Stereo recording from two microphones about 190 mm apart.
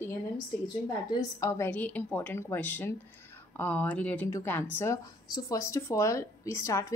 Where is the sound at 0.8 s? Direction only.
20° left (ahead or behind).